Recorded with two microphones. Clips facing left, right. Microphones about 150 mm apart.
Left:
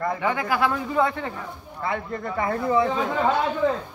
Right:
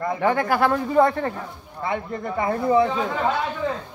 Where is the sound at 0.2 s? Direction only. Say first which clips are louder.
Right 6 dB; 55° right (ahead or behind).